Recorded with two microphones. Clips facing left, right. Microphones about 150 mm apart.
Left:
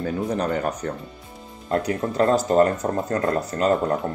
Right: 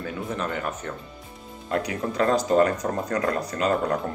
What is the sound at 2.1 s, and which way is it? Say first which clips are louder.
Speech: left 2 dB; 35° left (ahead or behind).